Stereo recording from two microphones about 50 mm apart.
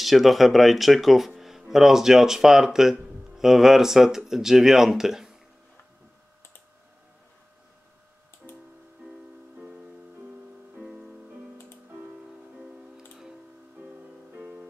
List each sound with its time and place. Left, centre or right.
0.0 s speech: centre
1.3 s music: centre
1.7 s speech: centre
8.4 s music: centre
10.8 s music: centre
12.5 s music: centre
14.3 s music: right